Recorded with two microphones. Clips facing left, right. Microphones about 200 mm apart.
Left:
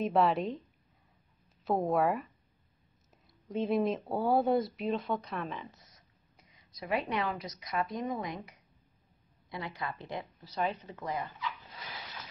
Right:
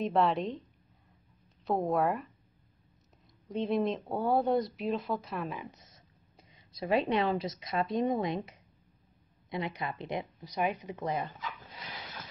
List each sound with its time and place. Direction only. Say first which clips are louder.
0.0 s speech: even; centre (ahead or behind)
3.4 s speech: even; centre (ahead or behind)
5.6 s a woman's voice: right 2 dB; 20° right (ahead or behind)